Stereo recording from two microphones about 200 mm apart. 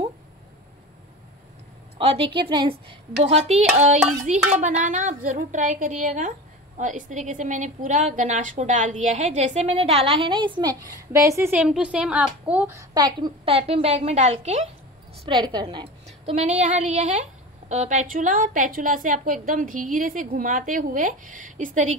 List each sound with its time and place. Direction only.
2.0 s a woman's voice: 25° right (ahead or behind); by 12.8 s 10° right (ahead or behind)
12.9 s a woman's voice: 25° right (ahead or behind)
15.2 s a woman's voice: 20° right (ahead or behind); by 21.9 s 40° right (ahead or behind)